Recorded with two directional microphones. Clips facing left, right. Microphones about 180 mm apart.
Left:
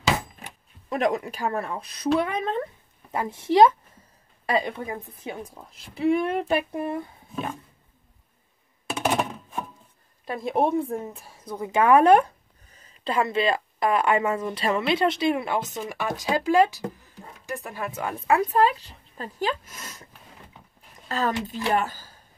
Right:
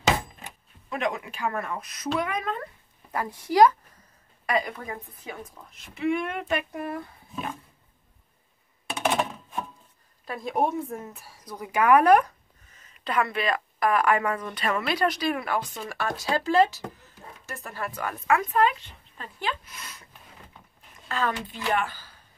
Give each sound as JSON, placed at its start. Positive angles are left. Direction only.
{"t": 0.8, "sound": "speech", "side_deg": 40}
{"t": 9.0, "sound": "chopping", "side_deg": 0}
{"t": 10.5, "sound": "speech", "side_deg": 30}
{"t": 21.1, "sound": "speech", "side_deg": 40}